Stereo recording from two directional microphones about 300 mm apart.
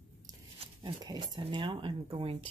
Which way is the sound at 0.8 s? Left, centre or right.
Centre.